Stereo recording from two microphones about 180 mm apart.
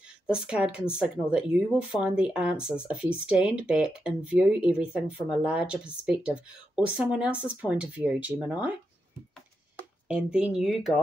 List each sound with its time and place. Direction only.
0.3 s speech: 5° right (ahead or behind)
10.0 s speech: 5° right (ahead or behind)